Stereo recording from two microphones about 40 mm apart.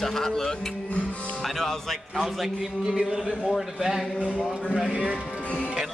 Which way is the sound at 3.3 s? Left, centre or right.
Centre.